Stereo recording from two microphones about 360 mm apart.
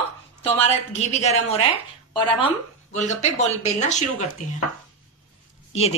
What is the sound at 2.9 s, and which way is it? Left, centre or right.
Speech, centre.